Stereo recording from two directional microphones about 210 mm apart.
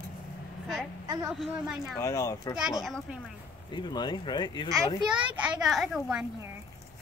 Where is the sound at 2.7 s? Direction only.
Centre (ahead or behind).